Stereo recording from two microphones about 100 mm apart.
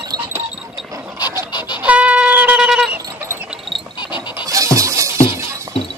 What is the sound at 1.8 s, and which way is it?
Shofar, 15° right (ahead or behind).